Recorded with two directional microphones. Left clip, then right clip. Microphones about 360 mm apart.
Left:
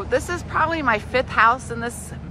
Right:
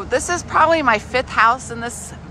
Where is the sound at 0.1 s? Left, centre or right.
Centre.